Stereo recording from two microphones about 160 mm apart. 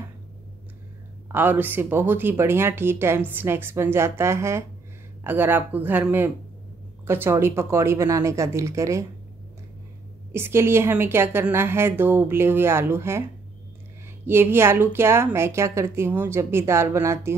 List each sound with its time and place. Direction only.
1.3 s speech: 10° right (ahead or behind)
10.3 s speech: 15° right (ahead or behind)
14.2 s speech: 15° right (ahead or behind)